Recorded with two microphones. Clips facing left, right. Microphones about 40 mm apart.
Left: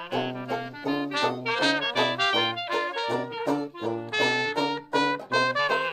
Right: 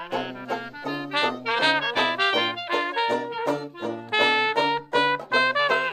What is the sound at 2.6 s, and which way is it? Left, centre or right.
Brass instrument, right.